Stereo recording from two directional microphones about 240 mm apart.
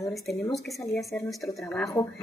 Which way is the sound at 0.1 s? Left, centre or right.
Centre.